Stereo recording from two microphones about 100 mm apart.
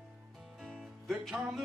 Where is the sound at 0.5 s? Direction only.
5° left (ahead or behind).